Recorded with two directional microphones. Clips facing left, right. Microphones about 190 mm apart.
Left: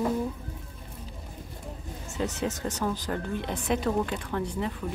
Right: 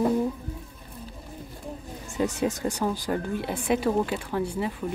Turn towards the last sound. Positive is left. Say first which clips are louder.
# right 3 dB
turn(degrees=-10)  # may be behind; listen again after turning